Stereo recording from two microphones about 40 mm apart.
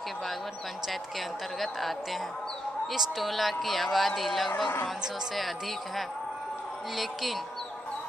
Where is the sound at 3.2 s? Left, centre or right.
Centre.